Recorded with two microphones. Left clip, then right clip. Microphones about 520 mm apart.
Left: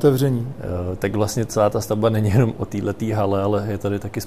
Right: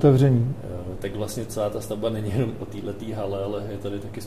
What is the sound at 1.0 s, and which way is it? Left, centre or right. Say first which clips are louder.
Speech: left 8 dB; left.